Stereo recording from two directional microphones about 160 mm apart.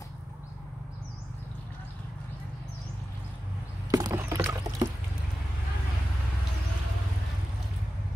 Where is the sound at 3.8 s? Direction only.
20° right (ahead or behind).